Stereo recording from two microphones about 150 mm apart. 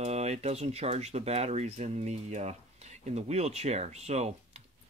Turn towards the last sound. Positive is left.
turn(degrees=-45)  # may be behind; listen again after turning